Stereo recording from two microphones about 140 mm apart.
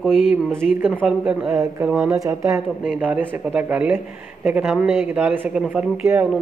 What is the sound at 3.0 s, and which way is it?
Speech, 10° right (ahead or behind).